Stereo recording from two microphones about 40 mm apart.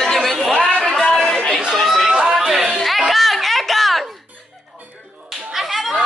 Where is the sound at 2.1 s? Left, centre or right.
Centre.